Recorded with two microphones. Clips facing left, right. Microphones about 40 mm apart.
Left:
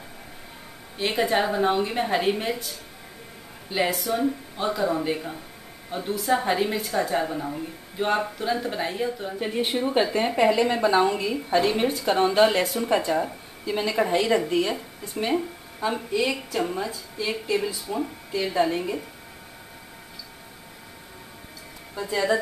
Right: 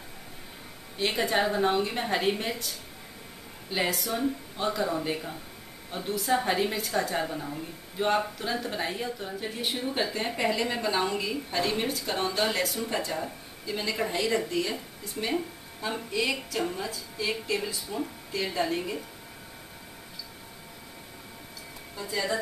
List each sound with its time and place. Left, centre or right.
0.9 s speech: centre
3.7 s speech: centre
9.4 s speech: left; by 18.9 s centre
21.9 s speech: centre